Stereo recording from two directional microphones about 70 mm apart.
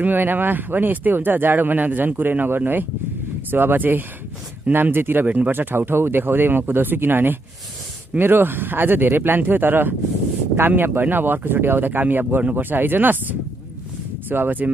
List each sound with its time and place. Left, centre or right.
0.0 s speech: right